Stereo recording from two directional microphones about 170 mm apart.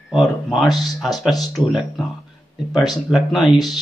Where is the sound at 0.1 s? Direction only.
Centre (ahead or behind).